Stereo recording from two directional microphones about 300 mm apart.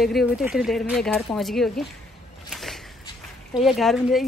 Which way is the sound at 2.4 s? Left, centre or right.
Centre.